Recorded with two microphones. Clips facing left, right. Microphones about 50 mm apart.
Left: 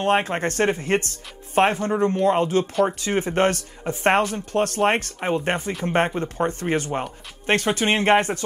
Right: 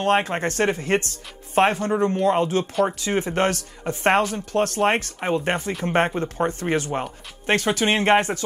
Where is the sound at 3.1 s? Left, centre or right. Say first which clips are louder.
Left 2 dB; left.